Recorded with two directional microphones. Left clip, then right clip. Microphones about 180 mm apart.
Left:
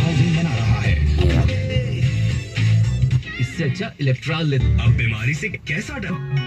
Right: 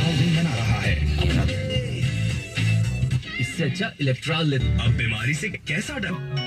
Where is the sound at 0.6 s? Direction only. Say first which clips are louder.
Left 1 dB; 35° left (ahead or behind).